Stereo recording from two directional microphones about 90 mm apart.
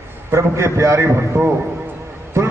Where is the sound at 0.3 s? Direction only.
30° right (ahead or behind).